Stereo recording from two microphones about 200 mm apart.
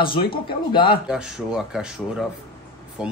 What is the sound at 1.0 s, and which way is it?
Speech, 5° right (ahead or behind).